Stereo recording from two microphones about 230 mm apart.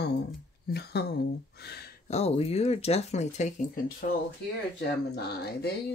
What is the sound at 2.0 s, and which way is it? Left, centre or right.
Speech, left.